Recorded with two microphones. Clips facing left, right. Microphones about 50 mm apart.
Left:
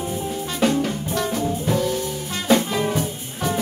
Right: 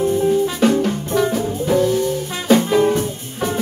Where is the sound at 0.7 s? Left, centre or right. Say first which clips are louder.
Right 4 dB; centre.